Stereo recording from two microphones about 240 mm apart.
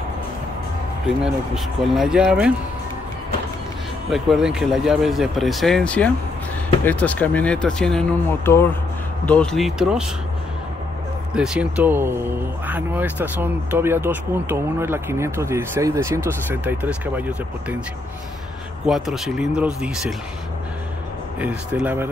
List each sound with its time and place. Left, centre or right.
1.2 s speech: centre
4.1 s speech: centre
11.3 s speech: centre
18.9 s speech: centre
21.4 s speech: centre